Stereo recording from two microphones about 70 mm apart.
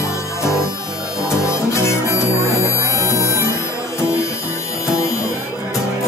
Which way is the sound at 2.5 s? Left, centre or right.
Left.